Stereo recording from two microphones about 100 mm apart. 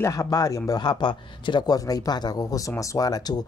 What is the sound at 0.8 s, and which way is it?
Speech, 50° left (ahead or behind).